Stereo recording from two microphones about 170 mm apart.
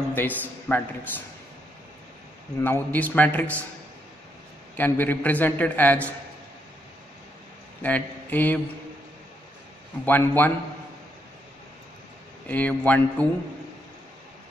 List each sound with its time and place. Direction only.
0.1 s a man's voice: 10° left (ahead or behind)
2.6 s a man's voice: 10° left (ahead or behind)
4.7 s a man's voice: 10° left (ahead or behind)
7.8 s speech: 10° left (ahead or behind)
10.0 s a man's voice: 10° left (ahead or behind)
12.4 s a man's voice: 10° left (ahead or behind)